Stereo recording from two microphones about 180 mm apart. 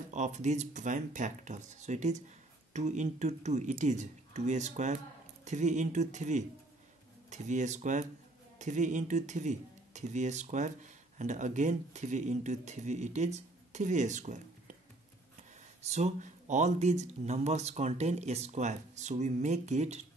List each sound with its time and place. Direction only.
0.1 s speech: 40° right (ahead or behind)
15.8 s speech: 40° right (ahead or behind)